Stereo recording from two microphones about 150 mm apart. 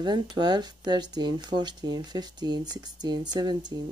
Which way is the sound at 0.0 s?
30° right (ahead or behind).